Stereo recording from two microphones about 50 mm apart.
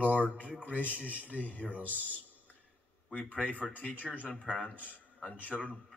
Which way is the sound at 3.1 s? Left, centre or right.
Left.